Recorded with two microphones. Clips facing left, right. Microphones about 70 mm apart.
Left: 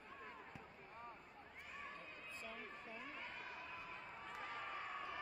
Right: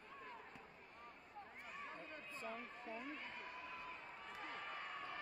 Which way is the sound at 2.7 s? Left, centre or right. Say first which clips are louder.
Right 3 dB; centre.